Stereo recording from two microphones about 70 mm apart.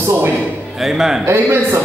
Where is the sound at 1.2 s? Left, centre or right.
Right.